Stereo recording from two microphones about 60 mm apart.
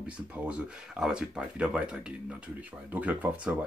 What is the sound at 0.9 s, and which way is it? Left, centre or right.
Speech, centre.